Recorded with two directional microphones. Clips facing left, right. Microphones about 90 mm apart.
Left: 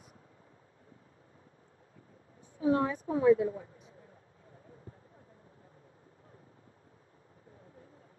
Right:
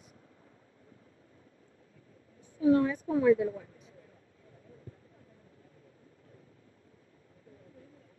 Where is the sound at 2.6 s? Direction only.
30° left (ahead or behind).